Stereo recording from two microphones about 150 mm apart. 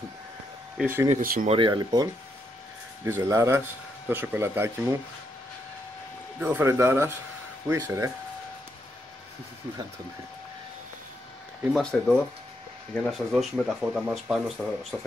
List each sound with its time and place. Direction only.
0.7 s speech: 15° right (ahead or behind)
1.2 s speech: 65° right (ahead or behind)
1.5 s speech: 30° right (ahead or behind)
3.1 s speech: 15° right (ahead or behind)
6.4 s speech: 15° right (ahead or behind)
11.7 s speech: 5° left (ahead or behind)
13.3 s speech: 5° right (ahead or behind)